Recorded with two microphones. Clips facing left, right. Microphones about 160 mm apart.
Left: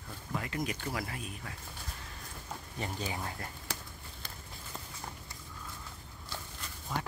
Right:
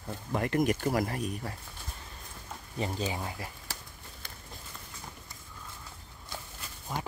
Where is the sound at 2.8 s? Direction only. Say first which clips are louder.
Right 5 dB; 25° right (ahead or behind).